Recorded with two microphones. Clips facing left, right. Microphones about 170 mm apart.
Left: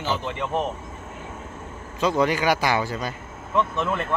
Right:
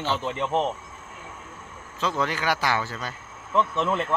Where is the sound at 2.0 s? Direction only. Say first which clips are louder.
Left 6 dB; 15° left (ahead or behind).